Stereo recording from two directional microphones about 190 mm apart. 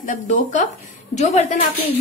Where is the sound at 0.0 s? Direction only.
40° left (ahead or behind).